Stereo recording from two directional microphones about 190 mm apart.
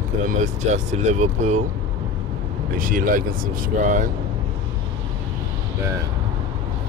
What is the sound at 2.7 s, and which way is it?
Speech, 45° right (ahead or behind).